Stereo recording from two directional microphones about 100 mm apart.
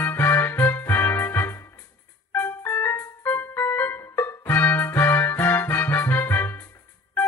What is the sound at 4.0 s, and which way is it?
Music, 25° left (ahead or behind).